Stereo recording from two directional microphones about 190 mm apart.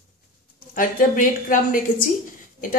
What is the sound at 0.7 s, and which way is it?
A woman's voice, 45° left (ahead or behind).